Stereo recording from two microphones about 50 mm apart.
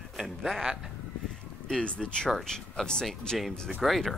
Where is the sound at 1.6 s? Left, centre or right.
Centre.